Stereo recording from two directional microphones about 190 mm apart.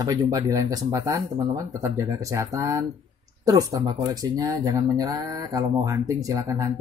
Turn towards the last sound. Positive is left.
turn(degrees=-15)  # may be behind; listen again after turning